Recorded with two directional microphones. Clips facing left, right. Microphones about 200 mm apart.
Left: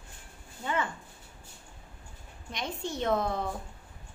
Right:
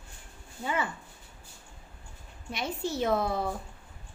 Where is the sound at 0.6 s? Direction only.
10° right (ahead or behind).